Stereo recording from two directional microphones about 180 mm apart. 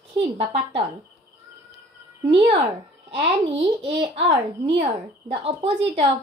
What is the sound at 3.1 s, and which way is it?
A child's voice, 30° right (ahead or behind).